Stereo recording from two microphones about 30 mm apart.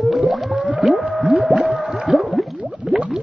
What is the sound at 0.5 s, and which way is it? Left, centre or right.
Whale vocalization, right.